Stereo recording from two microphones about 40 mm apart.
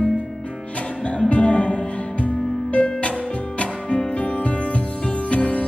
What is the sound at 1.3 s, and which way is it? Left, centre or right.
Music, left.